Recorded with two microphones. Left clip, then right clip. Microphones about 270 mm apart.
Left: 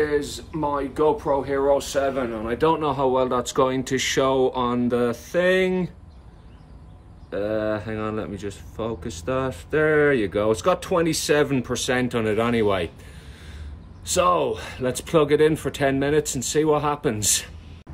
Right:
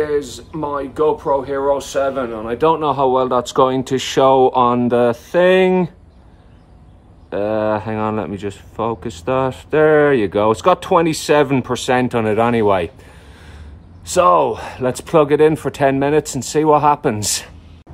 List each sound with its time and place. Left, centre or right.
0.0 s speech: centre
7.2 s speech: centre
14.0 s speech: centre